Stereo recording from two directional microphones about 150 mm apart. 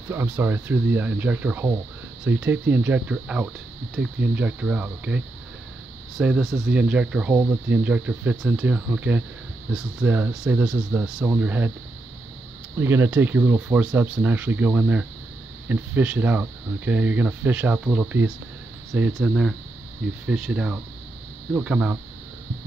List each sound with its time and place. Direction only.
0.1 s speech: 15° right (ahead or behind)
12.7 s speech: 15° right (ahead or behind)